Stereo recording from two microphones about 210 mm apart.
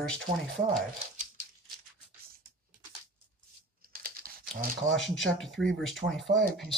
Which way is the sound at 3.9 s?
45° right (ahead or behind).